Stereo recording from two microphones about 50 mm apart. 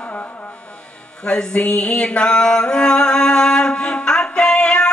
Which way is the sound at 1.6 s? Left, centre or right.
Left.